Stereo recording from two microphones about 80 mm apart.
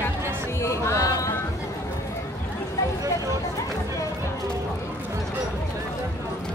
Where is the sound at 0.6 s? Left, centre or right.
Left.